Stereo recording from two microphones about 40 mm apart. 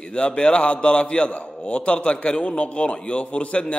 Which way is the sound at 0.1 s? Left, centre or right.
Left.